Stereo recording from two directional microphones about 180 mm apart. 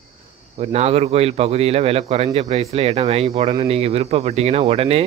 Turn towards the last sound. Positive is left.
turn(degrees=-35)  # may be behind; listen again after turning